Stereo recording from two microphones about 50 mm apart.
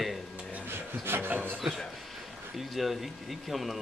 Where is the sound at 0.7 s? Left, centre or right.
Right.